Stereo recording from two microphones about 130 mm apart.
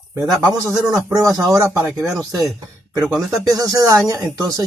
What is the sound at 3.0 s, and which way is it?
Speech, 5° right (ahead or behind).